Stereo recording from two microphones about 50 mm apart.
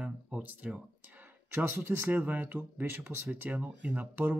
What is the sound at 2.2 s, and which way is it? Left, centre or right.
Speech, right.